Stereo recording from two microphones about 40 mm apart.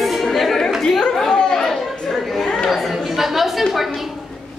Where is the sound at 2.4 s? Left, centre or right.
Left.